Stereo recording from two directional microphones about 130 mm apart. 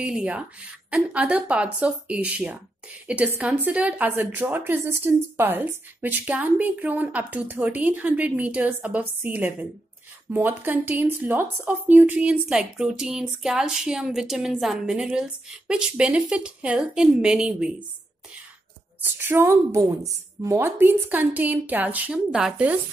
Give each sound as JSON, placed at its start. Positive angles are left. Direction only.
{"t": 0.0, "sound": "speech", "side_deg": -10}
{"t": 18.9, "sound": "a woman's voice", "side_deg": -15}